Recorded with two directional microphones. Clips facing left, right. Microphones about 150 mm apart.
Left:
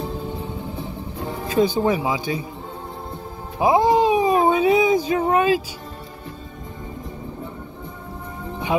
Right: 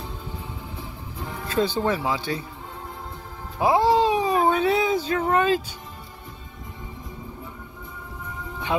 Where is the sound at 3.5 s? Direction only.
15° left (ahead or behind).